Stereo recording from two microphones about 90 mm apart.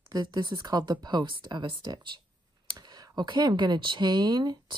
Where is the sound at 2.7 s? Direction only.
45° right (ahead or behind).